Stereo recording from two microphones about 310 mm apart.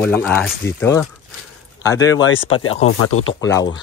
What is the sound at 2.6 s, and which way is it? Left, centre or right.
Speech, left.